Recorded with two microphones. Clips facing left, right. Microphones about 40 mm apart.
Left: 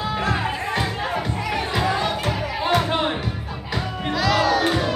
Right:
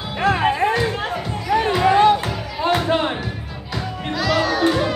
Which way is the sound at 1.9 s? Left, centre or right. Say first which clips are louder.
Right 9 dB; right.